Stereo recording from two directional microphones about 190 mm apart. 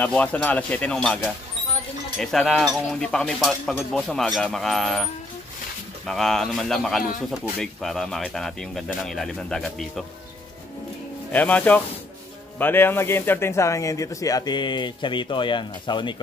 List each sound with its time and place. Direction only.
0.0 s speech: 10° left (ahead or behind)
6.0 s speech: centre (ahead or behind)
11.3 s speech: 10° left (ahead or behind); by 16.2 s 25° left (ahead or behind)